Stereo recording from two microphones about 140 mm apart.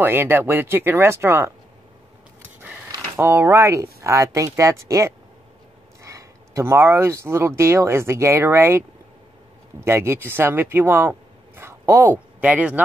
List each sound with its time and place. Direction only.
0.0 s speech: 15° right (ahead or behind)
3.2 s speech: 15° right (ahead or behind)
9.8 s speech: 15° right (ahead or behind)